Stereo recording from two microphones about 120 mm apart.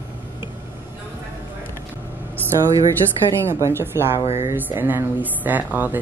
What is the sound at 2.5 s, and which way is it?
A woman's voice, 30° right (ahead or behind).